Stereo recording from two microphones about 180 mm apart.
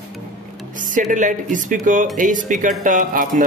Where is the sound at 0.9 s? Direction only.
45° right (ahead or behind).